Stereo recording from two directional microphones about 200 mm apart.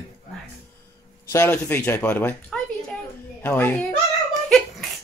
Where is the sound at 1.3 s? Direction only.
10° left (ahead or behind).